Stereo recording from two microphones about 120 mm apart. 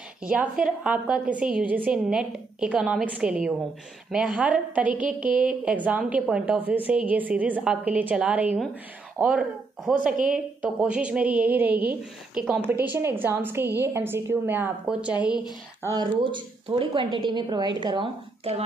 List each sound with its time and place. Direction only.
0.3 s a woman's voice: 10° right (ahead or behind)
9.9 s a woman's voice: 5° right (ahead or behind)
15.9 s a woman's voice: 40° right (ahead or behind)